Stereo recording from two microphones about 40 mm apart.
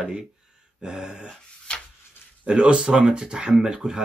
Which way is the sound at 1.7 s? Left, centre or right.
Left.